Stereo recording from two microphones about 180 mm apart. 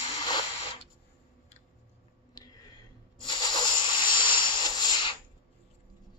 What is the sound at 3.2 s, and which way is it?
Hiss, 25° left (ahead or behind).